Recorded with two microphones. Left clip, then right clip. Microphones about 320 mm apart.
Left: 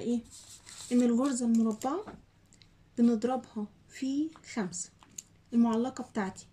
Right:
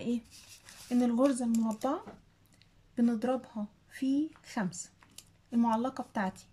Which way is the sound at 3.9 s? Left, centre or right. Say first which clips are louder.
Right 1 dB; centre.